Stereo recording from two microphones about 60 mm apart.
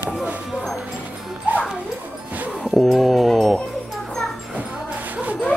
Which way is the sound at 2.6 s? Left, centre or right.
Centre.